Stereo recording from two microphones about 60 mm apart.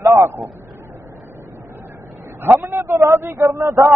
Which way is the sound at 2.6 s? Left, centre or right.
Right.